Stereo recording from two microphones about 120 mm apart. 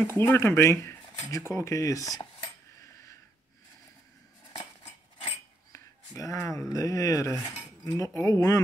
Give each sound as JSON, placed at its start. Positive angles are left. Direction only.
{"t": 0.0, "sound": "speech", "side_deg": 20}
{"t": 1.5, "sound": "cutlery", "side_deg": 25}
{"t": 5.7, "sound": "a sound", "side_deg": 25}
{"t": 6.7, "sound": "speech", "side_deg": 30}